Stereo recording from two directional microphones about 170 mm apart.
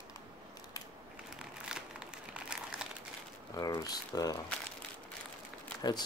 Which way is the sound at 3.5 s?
20° left (ahead or behind).